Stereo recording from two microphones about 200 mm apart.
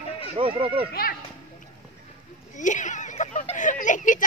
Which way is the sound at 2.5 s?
40° left (ahead or behind).